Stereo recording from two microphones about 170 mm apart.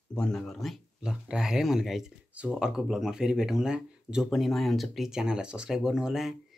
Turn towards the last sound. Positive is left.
turn(degrees=-5)  # may be behind; listen again after turning